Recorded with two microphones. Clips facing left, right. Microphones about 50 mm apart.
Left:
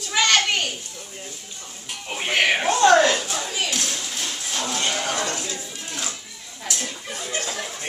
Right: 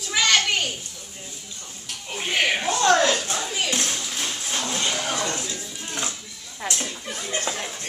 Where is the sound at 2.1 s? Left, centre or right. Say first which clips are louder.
Left 2 dB; centre.